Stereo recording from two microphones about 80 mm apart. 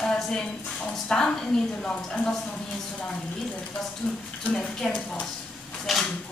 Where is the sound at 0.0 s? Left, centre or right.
Centre.